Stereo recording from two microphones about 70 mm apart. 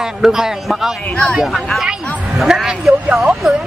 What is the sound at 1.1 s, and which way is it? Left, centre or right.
Speech, centre.